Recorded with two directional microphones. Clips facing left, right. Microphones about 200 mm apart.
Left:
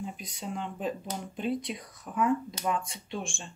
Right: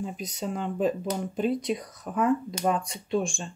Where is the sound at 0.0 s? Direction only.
40° right (ahead or behind).